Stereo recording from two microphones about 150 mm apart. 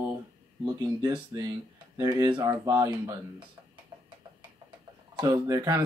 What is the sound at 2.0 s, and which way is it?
Speech, 30° right (ahead or behind).